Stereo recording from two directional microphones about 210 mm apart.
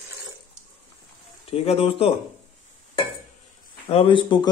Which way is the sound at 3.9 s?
25° left (ahead or behind).